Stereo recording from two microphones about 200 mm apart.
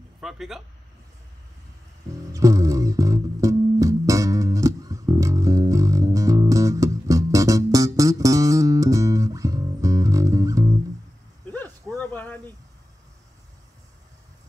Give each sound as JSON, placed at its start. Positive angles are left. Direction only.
{"t": 0.2, "sound": "speech", "side_deg": 0}
{"t": 2.3, "sound": "music", "side_deg": -15}
{"t": 12.0, "sound": "a sound", "side_deg": 10}